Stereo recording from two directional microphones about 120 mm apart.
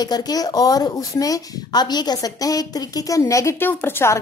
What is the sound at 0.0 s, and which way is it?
A woman's voice, 35° left (ahead or behind).